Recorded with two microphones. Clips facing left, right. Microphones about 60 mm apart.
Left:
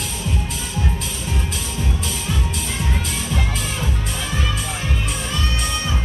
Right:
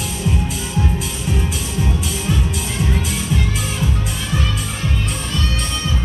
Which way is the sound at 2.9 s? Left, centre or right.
Centre.